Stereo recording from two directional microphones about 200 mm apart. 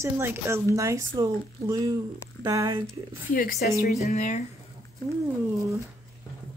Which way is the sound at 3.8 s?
35° left (ahead or behind).